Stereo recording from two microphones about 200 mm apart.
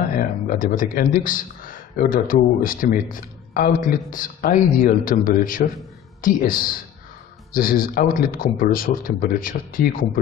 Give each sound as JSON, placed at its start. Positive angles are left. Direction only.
{"t": 0.1, "sound": "a man's voice", "side_deg": 45}